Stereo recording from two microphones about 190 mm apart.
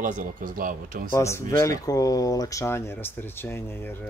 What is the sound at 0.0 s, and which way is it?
Speech, 45° right (ahead or behind).